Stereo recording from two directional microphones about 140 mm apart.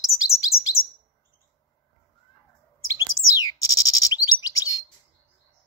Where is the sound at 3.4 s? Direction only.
25° left (ahead or behind).